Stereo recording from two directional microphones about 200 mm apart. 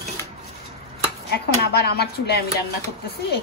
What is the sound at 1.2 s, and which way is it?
Speech, 55° left (ahead or behind).